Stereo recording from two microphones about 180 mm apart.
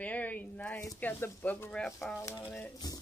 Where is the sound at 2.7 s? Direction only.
20° left (ahead or behind).